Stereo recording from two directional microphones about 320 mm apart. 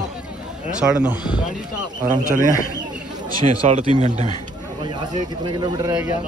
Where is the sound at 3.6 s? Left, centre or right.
Right.